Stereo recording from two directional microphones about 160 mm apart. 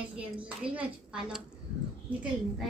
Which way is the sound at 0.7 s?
5° right (ahead or behind).